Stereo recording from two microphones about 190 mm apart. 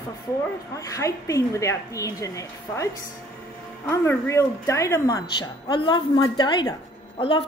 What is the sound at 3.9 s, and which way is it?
A woman's voice, 15° left (ahead or behind).